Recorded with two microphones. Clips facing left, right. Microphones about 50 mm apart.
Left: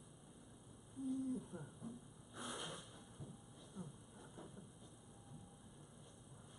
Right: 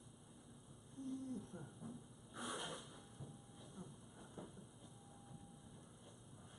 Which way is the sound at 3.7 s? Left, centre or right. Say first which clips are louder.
Left 4 dB; centre.